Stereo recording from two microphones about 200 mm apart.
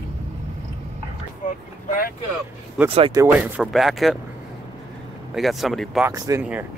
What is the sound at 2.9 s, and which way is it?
Speech, 25° right (ahead or behind).